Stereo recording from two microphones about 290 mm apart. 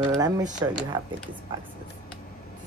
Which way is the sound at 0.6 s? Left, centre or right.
Centre.